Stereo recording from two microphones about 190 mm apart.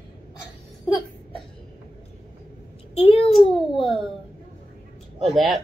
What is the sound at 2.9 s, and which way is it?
Speech, 30° left (ahead or behind).